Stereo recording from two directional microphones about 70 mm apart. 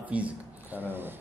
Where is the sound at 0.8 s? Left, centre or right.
Right.